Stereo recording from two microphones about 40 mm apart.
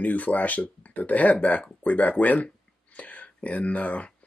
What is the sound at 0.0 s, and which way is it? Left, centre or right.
Speech, left.